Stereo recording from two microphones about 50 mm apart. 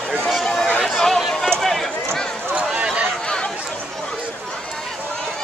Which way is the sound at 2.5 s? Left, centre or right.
Right.